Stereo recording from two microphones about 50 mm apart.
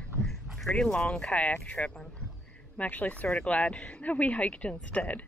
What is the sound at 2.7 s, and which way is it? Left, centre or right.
A woman's voice, left.